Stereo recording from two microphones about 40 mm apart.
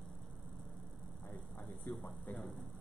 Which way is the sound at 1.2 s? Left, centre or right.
Left.